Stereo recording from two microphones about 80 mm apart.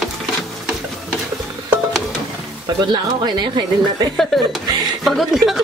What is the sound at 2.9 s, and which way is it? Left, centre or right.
Speech, right.